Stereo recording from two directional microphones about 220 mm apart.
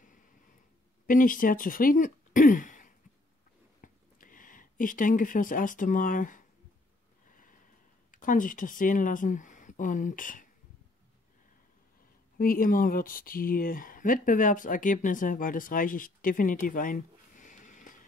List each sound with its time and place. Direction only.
1.0 s speech: 40° left (ahead or behind)
7.2 s a sound: 35° left (ahead or behind)
8.1 s speech: 35° left (ahead or behind)
12.4 s speech: 40° left (ahead or behind)